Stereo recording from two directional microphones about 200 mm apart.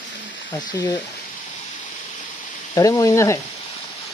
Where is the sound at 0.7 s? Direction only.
20° left (ahead or behind).